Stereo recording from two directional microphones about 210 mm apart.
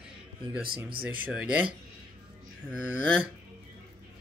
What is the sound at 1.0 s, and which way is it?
Speech, 5° right (ahead or behind).